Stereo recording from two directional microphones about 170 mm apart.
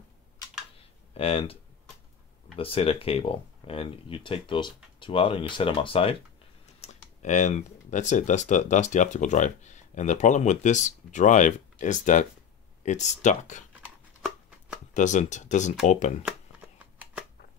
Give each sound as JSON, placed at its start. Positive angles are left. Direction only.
{"t": 0.7, "sound": "a sound", "side_deg": 35}
{"t": 2.5, "sound": "speech", "side_deg": 35}
{"t": 6.8, "sound": "speech", "side_deg": 45}
{"t": 15.0, "sound": "speech", "side_deg": 45}
{"t": 16.3, "sound": "shuffling cards", "side_deg": -10}